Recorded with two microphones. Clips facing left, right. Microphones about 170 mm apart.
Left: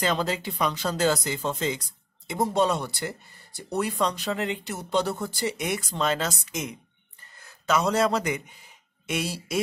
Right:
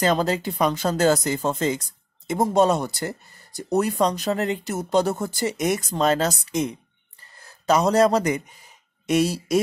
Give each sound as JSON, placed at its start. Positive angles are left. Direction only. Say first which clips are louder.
{"t": 0.0, "sound": "a man's voice", "louder": "right 5 dB", "side_deg": -40}